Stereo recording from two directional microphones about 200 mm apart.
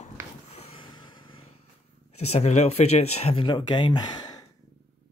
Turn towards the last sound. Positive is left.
turn(degrees=20)  # may be behind; listen again after turning